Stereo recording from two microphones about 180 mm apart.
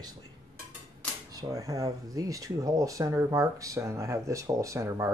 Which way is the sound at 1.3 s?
20° right (ahead or behind).